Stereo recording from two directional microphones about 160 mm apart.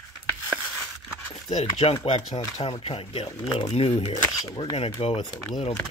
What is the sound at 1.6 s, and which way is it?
Speech, 35° left (ahead or behind).